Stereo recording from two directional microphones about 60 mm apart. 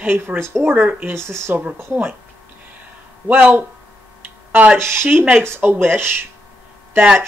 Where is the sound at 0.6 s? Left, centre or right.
Right.